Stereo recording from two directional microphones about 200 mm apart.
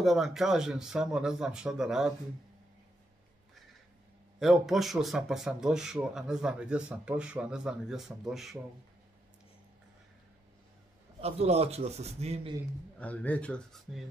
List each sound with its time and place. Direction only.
0.0 s speech: centre (ahead or behind)
4.4 s speech: centre (ahead or behind)
11.1 s a man's voice: 30° right (ahead or behind)
13.0 s speech: 5° left (ahead or behind)